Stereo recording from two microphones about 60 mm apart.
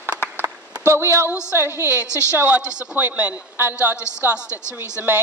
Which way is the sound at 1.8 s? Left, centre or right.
Left.